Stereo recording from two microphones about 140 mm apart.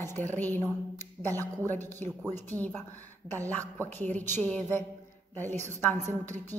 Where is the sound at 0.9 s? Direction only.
15° left (ahead or behind).